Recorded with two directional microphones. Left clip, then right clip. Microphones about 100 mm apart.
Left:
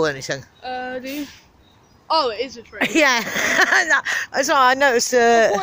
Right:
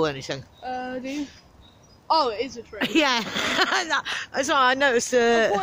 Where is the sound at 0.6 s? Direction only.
15° right (ahead or behind).